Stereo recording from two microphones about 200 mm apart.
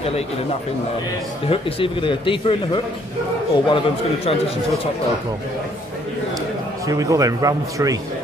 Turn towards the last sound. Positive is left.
turn(degrees=-15)  # may be behind; listen again after turning